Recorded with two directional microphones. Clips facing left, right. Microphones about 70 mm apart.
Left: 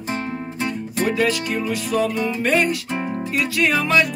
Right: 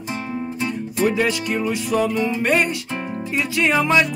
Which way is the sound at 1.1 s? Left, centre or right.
Centre.